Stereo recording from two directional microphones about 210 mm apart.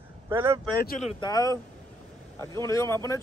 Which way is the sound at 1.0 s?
20° left (ahead or behind).